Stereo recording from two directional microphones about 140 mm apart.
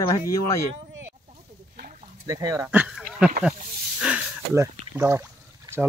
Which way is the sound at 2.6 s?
10° right (ahead or behind).